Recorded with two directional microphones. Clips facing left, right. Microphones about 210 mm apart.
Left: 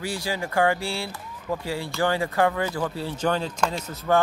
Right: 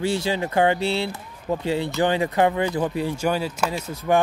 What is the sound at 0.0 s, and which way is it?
Speech, 25° right (ahead or behind).